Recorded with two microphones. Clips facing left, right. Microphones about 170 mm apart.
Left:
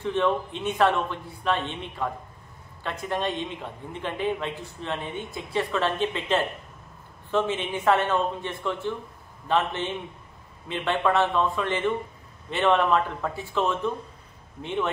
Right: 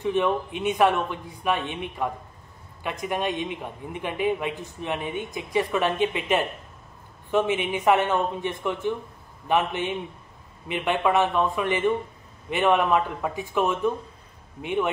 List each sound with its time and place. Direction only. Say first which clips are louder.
0.0 s a man's voice: right 1 dB; 15° right (ahead or behind)